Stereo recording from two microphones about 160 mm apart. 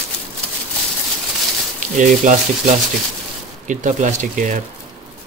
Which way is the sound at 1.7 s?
50° right (ahead or behind).